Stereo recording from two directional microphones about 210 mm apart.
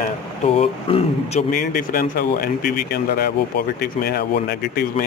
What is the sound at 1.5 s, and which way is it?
Speech, 45° left (ahead or behind).